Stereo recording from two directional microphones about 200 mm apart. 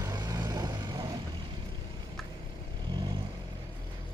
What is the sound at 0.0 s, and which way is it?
Vehicle, 20° right (ahead or behind).